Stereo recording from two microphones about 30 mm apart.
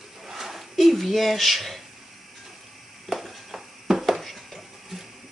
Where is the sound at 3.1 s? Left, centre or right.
Centre.